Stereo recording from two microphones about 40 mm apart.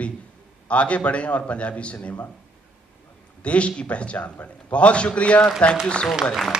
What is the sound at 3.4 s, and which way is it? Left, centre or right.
A man's voice, left.